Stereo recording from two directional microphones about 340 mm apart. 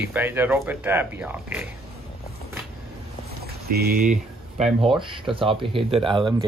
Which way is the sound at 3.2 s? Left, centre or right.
Right.